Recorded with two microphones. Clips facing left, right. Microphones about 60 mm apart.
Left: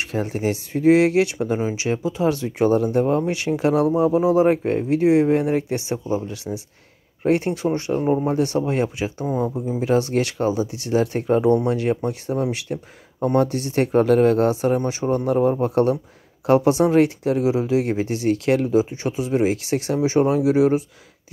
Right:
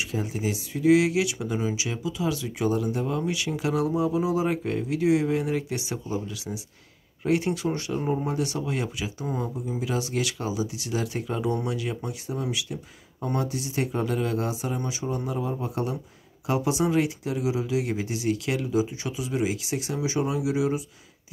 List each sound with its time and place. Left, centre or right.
0.0 s speech: left
9.2 s speech: centre
9.6 s speech: left
20.0 s speech: left